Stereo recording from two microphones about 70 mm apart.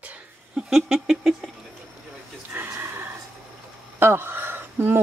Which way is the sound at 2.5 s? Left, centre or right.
Right.